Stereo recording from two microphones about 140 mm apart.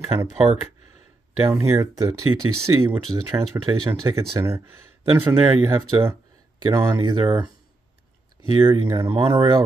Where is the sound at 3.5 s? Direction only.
20° right (ahead or behind).